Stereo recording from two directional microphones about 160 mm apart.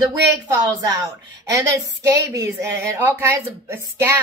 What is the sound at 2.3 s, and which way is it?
Speech, 20° right (ahead or behind).